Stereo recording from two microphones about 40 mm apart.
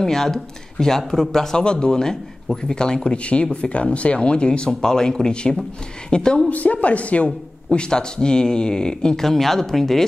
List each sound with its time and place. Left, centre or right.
0.0 s speech: centre
1.6 s speech: left
6.5 s a woman's voice: left
7.7 s speech: left
9.2 s speech: centre